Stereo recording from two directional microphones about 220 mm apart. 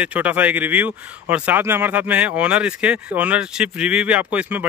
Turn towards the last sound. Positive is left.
turn(degrees=-5)  # may be behind; listen again after turning